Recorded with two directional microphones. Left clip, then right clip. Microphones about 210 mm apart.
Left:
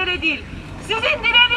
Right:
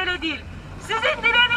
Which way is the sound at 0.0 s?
5° left (ahead or behind).